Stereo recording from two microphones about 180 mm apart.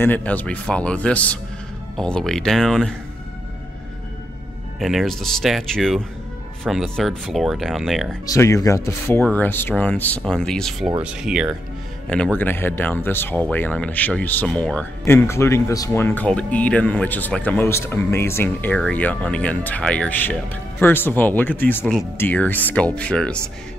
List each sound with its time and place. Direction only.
0.0 s speech: 10° left (ahead or behind)
4.7 s speech: centre (ahead or behind)
8.3 s speech: 15° left (ahead or behind); by 11.5 s 5° right (ahead or behind)
12.1 s speech: 5° left (ahead or behind)